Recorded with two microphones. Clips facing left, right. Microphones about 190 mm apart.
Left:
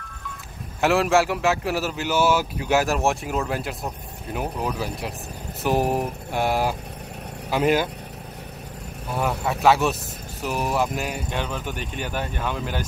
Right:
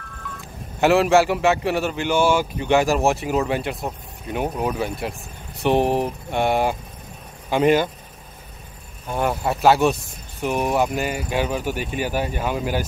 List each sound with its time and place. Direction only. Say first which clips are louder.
0.7 s a man's voice: right 3 dB; centre (ahead or behind)
9.1 s a man's voice: right 3 dB; centre (ahead or behind)